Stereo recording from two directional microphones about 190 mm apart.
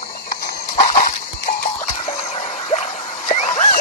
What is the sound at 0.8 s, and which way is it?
Dog, 45° left (ahead or behind).